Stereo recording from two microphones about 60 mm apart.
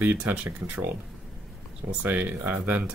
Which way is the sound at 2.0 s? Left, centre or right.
Right.